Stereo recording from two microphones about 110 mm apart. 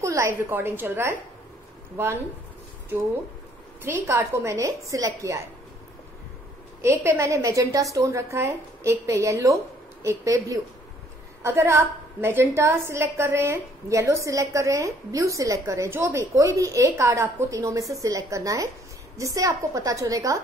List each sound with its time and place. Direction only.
0.0 s a sound: 25° right (ahead or behind)
0.4 s a woman's voice: 20° right (ahead or behind)
3.8 s a woman's voice: 25° right (ahead or behind)
6.8 s a woman's voice: 20° right (ahead or behind)